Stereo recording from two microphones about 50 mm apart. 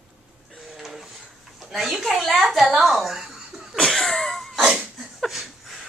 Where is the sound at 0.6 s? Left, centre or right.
Centre.